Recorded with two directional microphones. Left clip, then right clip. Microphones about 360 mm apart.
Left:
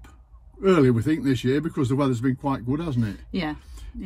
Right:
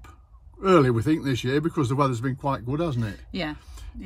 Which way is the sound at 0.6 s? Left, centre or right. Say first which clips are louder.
Even; centre.